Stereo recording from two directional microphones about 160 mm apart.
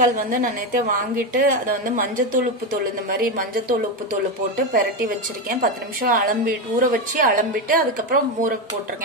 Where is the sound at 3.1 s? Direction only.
65° right (ahead or behind).